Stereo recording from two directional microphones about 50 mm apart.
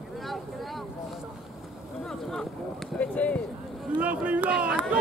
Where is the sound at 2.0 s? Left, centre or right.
Centre.